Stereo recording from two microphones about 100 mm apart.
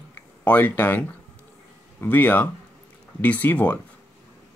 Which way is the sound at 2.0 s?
20° left (ahead or behind).